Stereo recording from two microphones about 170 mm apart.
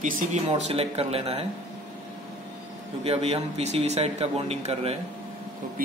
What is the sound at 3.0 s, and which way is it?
Speech, 35° right (ahead or behind).